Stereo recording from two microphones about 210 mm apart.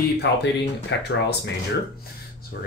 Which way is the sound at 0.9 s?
60° left (ahead or behind).